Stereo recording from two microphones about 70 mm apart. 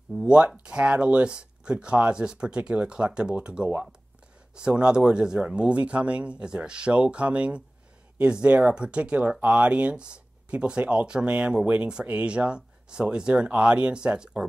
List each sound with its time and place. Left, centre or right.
0.2 s speech: centre